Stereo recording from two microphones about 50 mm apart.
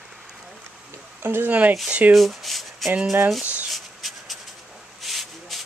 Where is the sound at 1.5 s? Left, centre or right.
Right.